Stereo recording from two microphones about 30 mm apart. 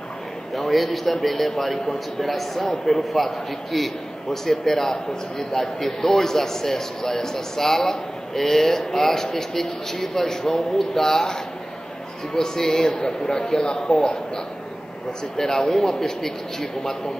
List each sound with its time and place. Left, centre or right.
0.6 s a man's voice: centre
12.4 s speech: centre